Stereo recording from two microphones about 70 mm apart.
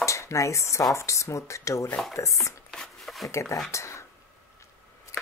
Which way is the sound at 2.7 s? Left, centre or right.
Centre.